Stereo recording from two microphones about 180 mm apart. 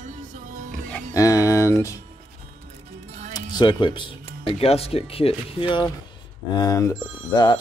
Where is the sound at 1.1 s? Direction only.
20° left (ahead or behind).